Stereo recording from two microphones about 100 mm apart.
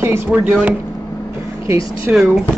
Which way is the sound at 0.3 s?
15° right (ahead or behind).